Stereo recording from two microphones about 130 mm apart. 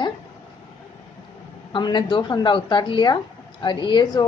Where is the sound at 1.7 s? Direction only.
35° left (ahead or behind).